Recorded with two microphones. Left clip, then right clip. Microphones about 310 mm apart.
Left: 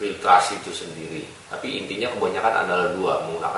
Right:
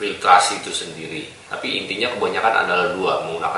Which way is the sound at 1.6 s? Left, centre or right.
Centre.